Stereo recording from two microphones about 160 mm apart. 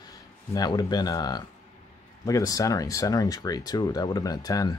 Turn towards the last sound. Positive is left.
turn(degrees=20)  # may be behind; listen again after turning